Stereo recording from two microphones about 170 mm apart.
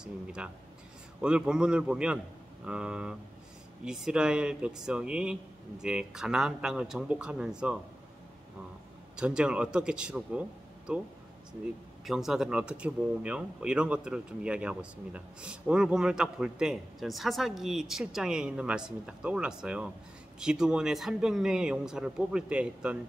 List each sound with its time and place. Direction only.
0.0 s speech: 5° right (ahead or behind)
9.1 s speech: 5° right (ahead or behind)
12.1 s speech: centre (ahead or behind)